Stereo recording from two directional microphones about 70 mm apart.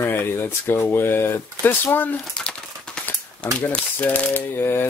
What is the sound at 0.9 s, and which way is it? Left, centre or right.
Speech, left.